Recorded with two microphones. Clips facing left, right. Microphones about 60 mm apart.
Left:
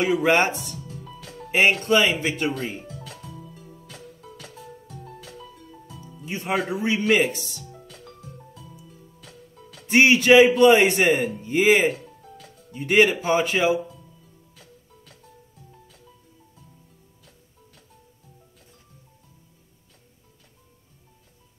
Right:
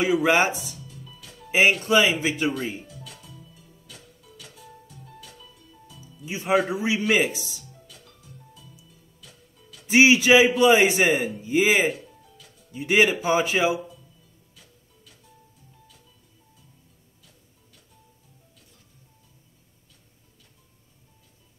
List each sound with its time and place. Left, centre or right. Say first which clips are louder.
0.0 s speech: left 1 dB; centre
0.8 s music: left 6 dB; left
1.9 s speech: even; centre
2.7 s music: left 2 dB; left
6.2 s speech: right 3 dB; centre
7.6 s music: left 7 dB; left
9.8 s speech: left 1 dB; centre
11.9 s music: left 1 dB; left
12.7 s a man's voice: left 2 dB; centre
14.5 s music: left 5 dB; left